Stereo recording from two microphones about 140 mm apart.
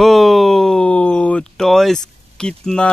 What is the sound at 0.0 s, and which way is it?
Speech, centre (ahead or behind).